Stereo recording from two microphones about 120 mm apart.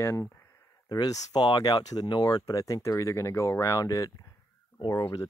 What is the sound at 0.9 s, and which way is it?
Speech, 30° left (ahead or behind).